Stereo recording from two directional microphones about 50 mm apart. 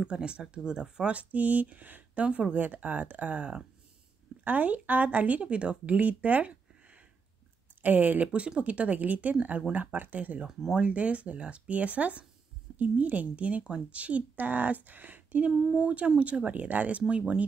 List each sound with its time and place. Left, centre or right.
0.0 s speech: centre
1.1 s speech: right
8.3 s speech: right